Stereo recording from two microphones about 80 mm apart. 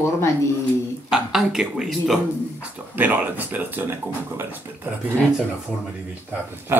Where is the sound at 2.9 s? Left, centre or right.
Right.